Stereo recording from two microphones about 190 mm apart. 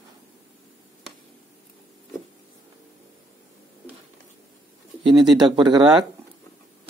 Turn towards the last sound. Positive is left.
turn(degrees=-25)  # may be behind; listen again after turning